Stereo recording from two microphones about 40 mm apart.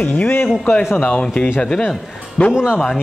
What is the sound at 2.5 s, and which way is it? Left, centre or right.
Speech, right.